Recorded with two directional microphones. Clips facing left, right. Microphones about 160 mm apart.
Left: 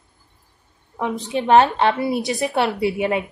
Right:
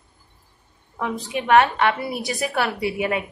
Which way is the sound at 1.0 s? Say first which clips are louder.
Left 3 dB; 20° left (ahead or behind).